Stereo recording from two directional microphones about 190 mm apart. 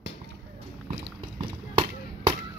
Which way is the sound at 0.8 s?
25° right (ahead or behind).